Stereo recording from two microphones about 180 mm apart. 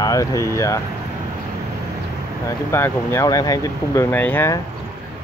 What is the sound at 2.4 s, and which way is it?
Speech, 15° left (ahead or behind).